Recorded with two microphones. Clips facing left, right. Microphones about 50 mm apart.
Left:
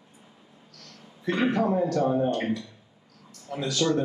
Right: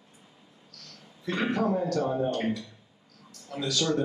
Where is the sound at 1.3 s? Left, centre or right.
Left.